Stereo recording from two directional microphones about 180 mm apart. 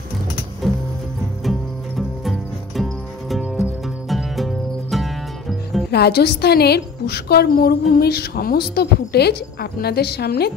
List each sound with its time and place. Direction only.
0.6 s music: centre (ahead or behind)
5.9 s a woman's voice: 65° left (ahead or behind)